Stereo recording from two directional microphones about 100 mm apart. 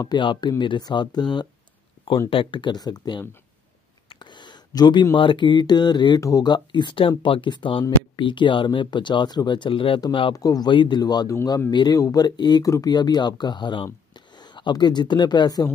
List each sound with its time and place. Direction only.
0.0 s speech: 50° left (ahead or behind)
2.0 s speech: 60° left (ahead or behind); by 3.3 s 45° left (ahead or behind)
4.1 s a sound: 50° left (ahead or behind)
5.1 s speech: 55° left (ahead or behind)
10.3 s speech: 40° left (ahead or behind)
10.7 s speech: 55° left (ahead or behind)
11.0 s speech: 40° left (ahead or behind)